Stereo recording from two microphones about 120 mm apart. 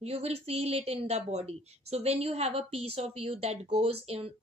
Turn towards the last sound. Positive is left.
turn(degrees=-55)  # may be behind; listen again after turning